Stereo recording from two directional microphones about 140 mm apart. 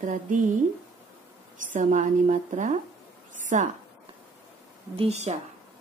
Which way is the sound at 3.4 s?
65° right (ahead or behind).